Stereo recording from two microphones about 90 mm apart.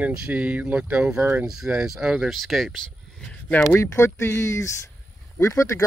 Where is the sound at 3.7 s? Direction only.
30° left (ahead or behind).